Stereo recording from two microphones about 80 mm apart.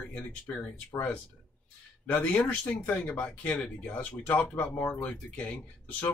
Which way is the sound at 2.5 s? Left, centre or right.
Centre.